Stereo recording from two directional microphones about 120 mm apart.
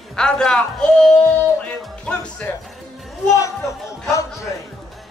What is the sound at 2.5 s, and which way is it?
Speech, 15° left (ahead or behind).